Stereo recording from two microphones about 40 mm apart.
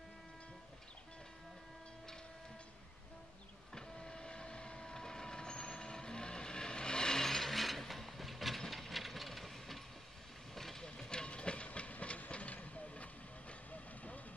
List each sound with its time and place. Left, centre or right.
3.7 s vehicle: centre
10.5 s train: centre; by 12.2 s left
12.3 s vehicle: left